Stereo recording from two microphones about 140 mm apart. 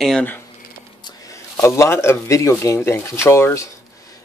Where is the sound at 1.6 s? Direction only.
20° left (ahead or behind).